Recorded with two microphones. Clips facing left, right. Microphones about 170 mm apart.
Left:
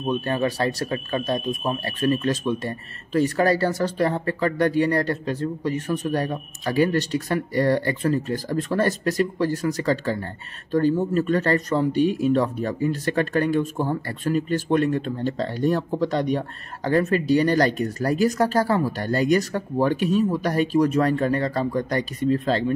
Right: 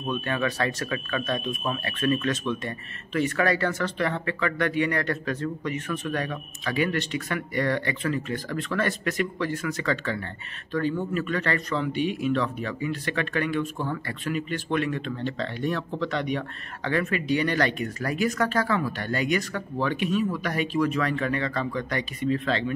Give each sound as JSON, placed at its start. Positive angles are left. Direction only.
{"t": 0.0, "sound": "speech", "side_deg": 35}